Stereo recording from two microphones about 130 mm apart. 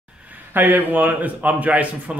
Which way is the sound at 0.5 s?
15° right (ahead or behind).